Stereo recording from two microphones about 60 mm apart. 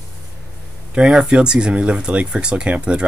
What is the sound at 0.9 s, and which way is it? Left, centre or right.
Speech, centre.